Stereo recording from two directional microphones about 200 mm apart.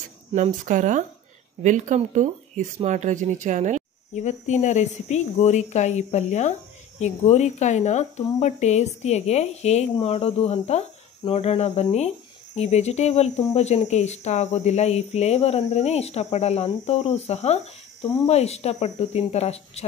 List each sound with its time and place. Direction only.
0.3 s speech: 40° right (ahead or behind)
4.1 s a woman's voice: 35° left (ahead or behind)